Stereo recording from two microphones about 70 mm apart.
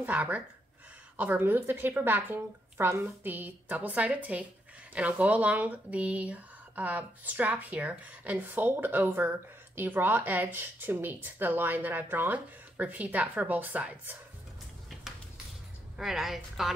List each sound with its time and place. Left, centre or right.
0.0 s speech: right
16.0 s a woman's voice: centre